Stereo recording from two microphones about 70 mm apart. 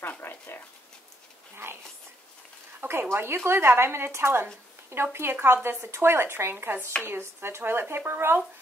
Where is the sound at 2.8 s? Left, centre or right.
Right.